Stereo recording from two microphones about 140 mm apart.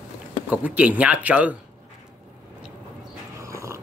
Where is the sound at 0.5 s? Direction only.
10° right (ahead or behind).